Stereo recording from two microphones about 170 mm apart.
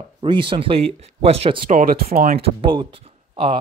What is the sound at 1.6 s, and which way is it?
Speech, 55° right (ahead or behind).